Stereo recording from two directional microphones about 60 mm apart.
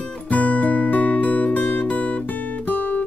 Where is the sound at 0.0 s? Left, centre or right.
Left.